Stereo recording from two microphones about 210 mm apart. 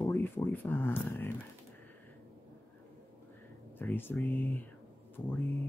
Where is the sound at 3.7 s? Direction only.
10° left (ahead or behind).